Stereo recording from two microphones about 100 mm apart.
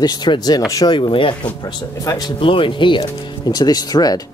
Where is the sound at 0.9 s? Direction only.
55° left (ahead or behind).